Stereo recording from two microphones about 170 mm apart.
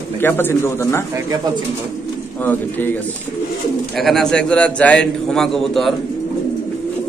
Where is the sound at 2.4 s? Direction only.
10° left (ahead or behind).